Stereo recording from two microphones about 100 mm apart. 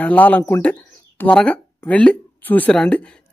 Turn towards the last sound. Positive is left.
turn(degrees=10)  # may be behind; listen again after turning